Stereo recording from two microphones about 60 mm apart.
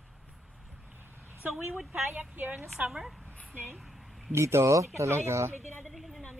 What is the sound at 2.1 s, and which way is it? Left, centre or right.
Speech, right.